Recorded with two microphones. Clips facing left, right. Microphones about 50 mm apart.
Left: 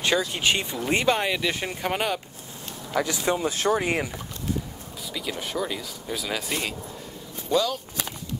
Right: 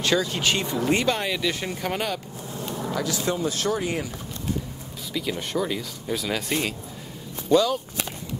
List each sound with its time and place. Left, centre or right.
0.3 s speech: centre
2.9 s speech: left
5.1 s speech: centre